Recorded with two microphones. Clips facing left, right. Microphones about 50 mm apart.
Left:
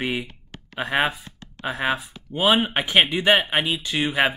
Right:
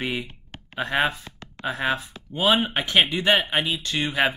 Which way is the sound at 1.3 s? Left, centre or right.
Right.